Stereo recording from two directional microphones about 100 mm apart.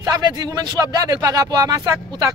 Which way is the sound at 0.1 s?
45° right (ahead or behind).